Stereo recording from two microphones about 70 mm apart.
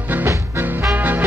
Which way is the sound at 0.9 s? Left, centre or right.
Right.